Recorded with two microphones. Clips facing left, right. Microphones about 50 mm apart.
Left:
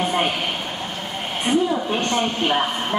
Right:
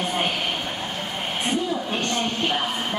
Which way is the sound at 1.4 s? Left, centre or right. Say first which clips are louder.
Left 6 dB; centre.